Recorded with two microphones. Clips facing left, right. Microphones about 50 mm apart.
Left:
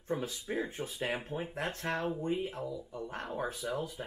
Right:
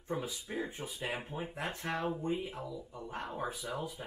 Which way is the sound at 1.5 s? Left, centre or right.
Centre.